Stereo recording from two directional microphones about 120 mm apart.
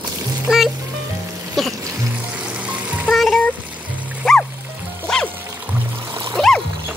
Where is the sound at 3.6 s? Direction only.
10° right (ahead or behind).